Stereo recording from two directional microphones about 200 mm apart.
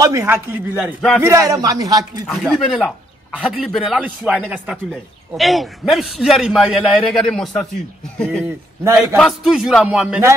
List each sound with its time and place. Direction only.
0.0 s a man's voice: 15° right (ahead or behind)
2.2 s a man's voice: centre (ahead or behind)